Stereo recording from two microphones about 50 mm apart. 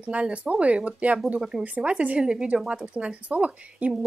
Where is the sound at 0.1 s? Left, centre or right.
Right.